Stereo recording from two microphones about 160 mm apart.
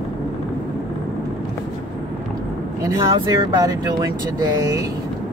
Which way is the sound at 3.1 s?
30° right (ahead or behind).